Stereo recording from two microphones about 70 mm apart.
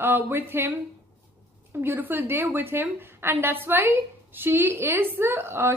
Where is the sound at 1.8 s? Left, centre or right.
Right.